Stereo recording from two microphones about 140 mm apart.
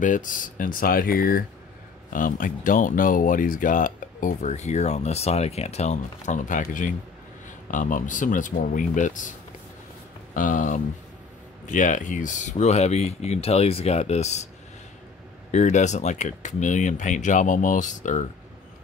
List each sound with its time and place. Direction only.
0.0 s speech: 65° left (ahead or behind); by 1.4 s 90° left
2.1 s speech: 70° left (ahead or behind)
10.3 s speech: 70° left (ahead or behind); by 14.5 s 50° left (ahead or behind)
15.5 s speech: 55° left (ahead or behind)